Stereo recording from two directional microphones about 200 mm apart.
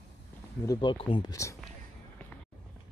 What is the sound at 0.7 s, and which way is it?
Speech, 20° left (ahead or behind).